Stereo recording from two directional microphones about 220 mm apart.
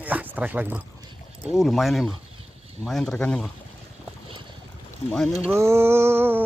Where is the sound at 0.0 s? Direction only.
10° right (ahead or behind).